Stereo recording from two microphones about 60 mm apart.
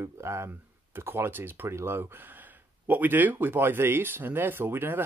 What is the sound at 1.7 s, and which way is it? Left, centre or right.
Speech, right.